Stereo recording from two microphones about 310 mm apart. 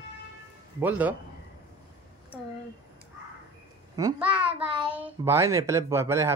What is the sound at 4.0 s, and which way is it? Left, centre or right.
Speech, centre.